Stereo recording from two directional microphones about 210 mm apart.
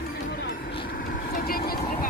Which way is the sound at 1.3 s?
45° left (ahead or behind).